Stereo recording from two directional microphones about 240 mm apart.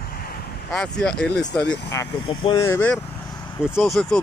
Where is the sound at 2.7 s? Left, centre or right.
Centre.